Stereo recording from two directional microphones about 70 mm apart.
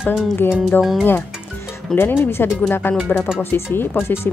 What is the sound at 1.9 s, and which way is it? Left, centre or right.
Speech, left.